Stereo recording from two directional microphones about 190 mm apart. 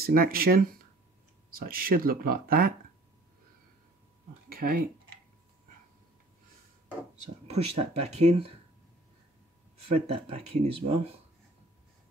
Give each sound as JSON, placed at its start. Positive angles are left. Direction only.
{"t": 0.0, "sound": "speech", "side_deg": -50}
{"t": 1.6, "sound": "speech", "side_deg": -50}
{"t": 4.6, "sound": "speech", "side_deg": -50}
{"t": 7.4, "sound": "speech", "side_deg": -35}
{"t": 9.8, "sound": "speech", "side_deg": -30}